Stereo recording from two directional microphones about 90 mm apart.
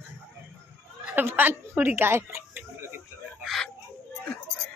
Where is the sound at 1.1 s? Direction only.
20° right (ahead or behind).